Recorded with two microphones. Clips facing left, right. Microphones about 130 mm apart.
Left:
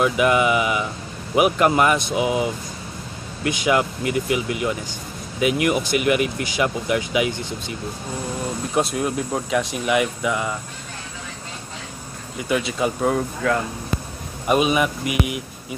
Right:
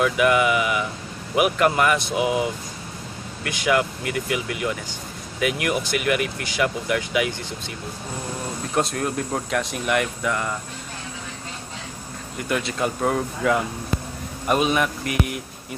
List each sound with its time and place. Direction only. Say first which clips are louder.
0.0 s speech: left 1 dB; 25° left (ahead or behind)
8.7 s speech: left 1 dB; 5° left (ahead or behind)
12.4 s speech: left 2 dB; 5° left (ahead or behind)
14.5 s speech: left 2 dB; 5° left (ahead or behind)